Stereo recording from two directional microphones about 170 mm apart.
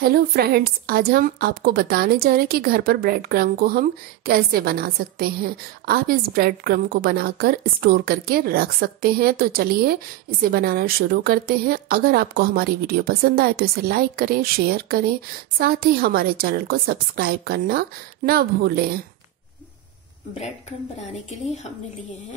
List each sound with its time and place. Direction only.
0.0 s a woman's voice: 65° right (ahead or behind)